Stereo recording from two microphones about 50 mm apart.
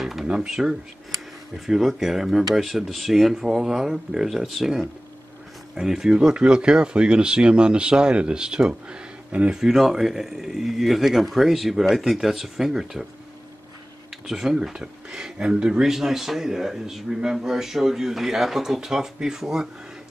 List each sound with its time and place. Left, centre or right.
0.0 s a sound: centre
0.5 s a man's voice: centre
6.1 s a man's voice: right
14.2 s a man's voice: centre